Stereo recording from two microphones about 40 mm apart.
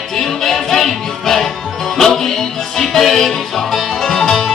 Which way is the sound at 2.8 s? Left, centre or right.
Centre.